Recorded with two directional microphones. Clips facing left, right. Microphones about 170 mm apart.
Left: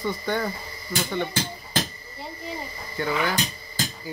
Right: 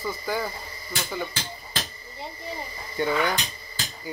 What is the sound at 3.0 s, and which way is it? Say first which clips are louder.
Speech: right 2 dB; 20° right (ahead or behind).